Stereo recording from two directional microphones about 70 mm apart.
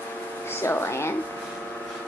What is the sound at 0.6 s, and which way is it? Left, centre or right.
Speech, left.